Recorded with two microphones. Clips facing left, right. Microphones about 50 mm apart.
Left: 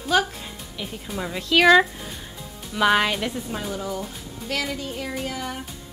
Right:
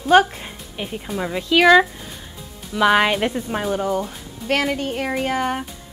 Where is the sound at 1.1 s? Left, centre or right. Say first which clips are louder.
Right 3 dB; centre.